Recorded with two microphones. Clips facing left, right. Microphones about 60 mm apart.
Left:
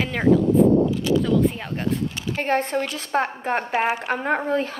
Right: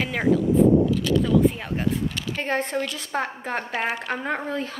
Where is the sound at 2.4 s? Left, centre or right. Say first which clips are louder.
Left 4 dB; left.